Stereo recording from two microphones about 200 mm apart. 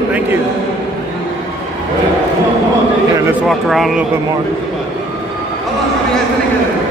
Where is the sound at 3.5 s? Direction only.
Centre (ahead or behind).